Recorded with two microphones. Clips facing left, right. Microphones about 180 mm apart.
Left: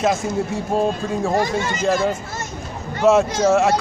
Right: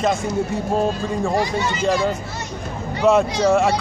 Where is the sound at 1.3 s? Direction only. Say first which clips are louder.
Left 1 dB; 45° left (ahead or behind).